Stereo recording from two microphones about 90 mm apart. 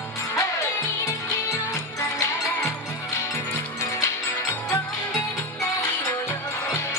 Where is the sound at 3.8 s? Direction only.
35° left (ahead or behind).